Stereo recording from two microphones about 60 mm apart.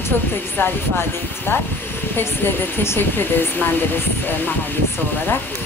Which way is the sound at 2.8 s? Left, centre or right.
Left.